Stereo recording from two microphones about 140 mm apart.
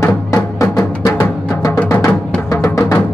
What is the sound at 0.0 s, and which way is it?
Music, 25° left (ahead or behind).